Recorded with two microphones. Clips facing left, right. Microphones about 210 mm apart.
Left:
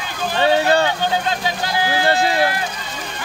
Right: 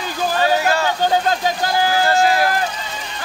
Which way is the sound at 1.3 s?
45° right (ahead or behind).